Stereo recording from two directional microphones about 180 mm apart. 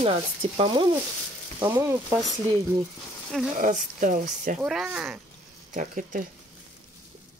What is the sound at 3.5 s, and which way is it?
Speech, 45° right (ahead or behind).